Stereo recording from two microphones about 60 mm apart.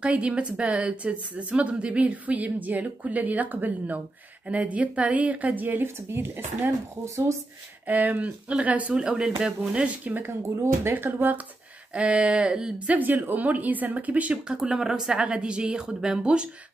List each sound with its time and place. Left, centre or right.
0.0 s a woman's voice: right
6.0 s speech: right
7.8 s a woman's voice: right
8.9 s speech: centre
9.7 s a woman's voice: right
11.9 s a woman's voice: right
14.5 s speech: centre